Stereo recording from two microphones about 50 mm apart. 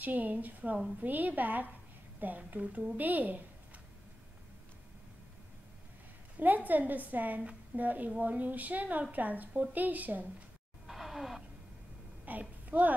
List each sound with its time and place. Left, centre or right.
0.0 s a woman's voice: right
6.3 s a woman's voice: right
10.9 s a sound: centre
12.3 s a woman's voice: right